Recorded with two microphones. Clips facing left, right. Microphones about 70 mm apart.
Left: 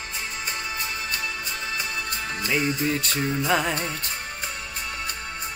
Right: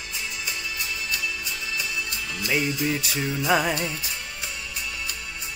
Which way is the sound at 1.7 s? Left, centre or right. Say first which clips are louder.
Even; left.